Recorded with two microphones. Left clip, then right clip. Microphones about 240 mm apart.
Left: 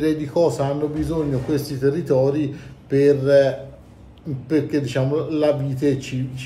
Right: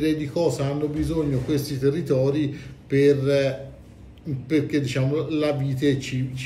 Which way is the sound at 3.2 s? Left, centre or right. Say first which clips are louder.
Left 6 dB; left.